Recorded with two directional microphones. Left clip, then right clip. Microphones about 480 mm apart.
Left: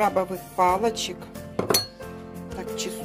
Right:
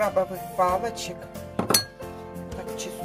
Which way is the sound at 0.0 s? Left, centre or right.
Centre.